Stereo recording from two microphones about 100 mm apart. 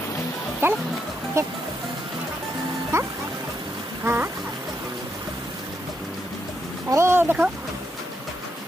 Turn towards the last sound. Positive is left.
turn(degrees=-20)  # may be behind; listen again after turning